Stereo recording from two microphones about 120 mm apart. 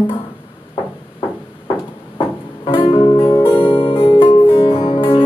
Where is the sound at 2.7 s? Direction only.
45° left (ahead or behind).